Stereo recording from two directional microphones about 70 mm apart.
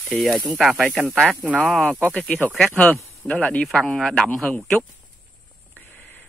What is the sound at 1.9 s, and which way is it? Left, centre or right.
Speech, centre.